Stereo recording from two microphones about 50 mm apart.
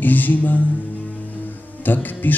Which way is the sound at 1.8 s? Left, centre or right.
Left.